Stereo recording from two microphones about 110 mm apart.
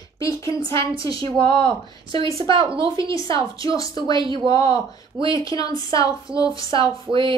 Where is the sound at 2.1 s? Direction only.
35° left (ahead or behind).